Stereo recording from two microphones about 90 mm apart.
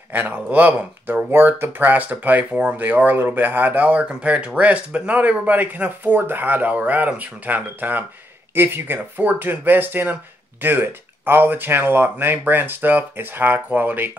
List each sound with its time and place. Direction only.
0.1 s speech: 20° right (ahead or behind)